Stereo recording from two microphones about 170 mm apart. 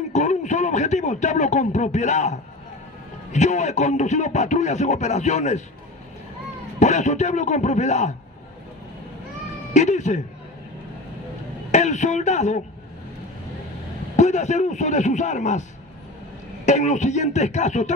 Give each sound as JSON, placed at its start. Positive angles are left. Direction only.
{"t": 0.1, "sound": "speech", "side_deg": 45}
{"t": 6.8, "sound": "speech", "side_deg": 45}
{"t": 9.8, "sound": "speech", "side_deg": 45}
{"t": 11.7, "sound": "speech", "side_deg": 45}
{"t": 14.1, "sound": "speech", "side_deg": 45}
{"t": 16.6, "sound": "speech", "side_deg": 45}